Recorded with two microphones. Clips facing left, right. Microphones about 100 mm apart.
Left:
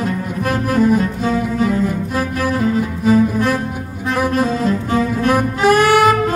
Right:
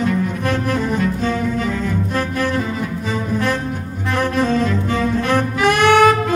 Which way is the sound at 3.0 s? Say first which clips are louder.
Left 8 dB; 5° left (ahead or behind).